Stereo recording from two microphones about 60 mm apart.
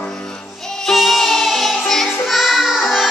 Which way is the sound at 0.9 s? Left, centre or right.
Centre.